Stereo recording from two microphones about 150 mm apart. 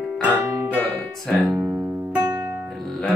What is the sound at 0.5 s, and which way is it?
Music, 20° right (ahead or behind).